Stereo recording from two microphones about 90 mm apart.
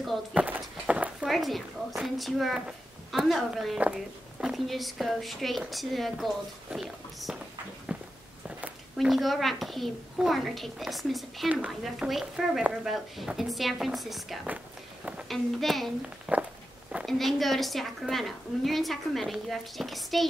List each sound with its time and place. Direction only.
0.3 s walk: 15° right (ahead or behind)
1.3 s a woman's voice: centre (ahead or behind)
7.9 s walk: 10° right (ahead or behind)
8.5 s a sound: 15° right (ahead or behind)
9.0 s a woman's voice: centre (ahead or behind)
16.3 s a sound: 15° right (ahead or behind)
17.0 s a woman's voice: centre (ahead or behind)